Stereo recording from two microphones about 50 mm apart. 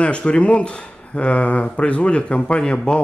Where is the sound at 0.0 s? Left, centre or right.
Left.